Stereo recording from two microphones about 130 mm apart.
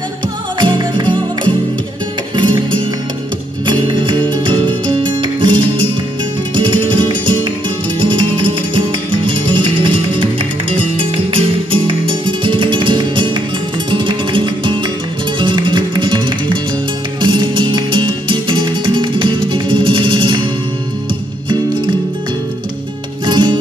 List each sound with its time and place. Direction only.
0.6 s music: 35° right (ahead or behind)
3.8 s music: 40° right (ahead or behind)
23.2 s music: 35° right (ahead or behind)